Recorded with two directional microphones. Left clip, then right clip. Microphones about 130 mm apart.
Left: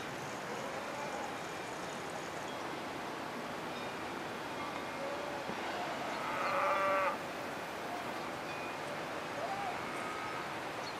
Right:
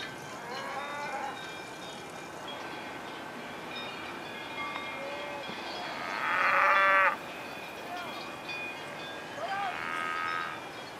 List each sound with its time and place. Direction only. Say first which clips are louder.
6.2 s sheep: right 9 dB; 15° left (ahead or behind)